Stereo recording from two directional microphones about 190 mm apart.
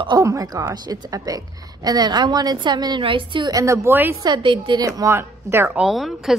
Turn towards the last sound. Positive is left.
turn(degrees=0)  # may be behind; listen again after turning